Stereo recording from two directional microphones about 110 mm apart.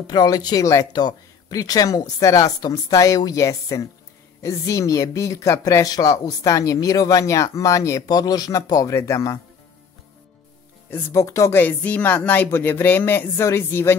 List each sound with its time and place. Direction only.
0.0 s speech: 35° left (ahead or behind)
10.9 s speech: 25° left (ahead or behind)
11.6 s speech: 15° left (ahead or behind)